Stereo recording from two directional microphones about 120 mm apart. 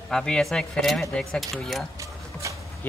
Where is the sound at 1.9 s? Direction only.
25° right (ahead or behind).